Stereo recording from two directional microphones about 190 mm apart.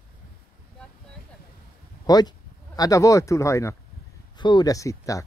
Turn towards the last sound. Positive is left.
turn(degrees=15)  # may be behind; listen again after turning